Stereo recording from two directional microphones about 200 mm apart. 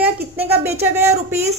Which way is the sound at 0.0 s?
10° right (ahead or behind).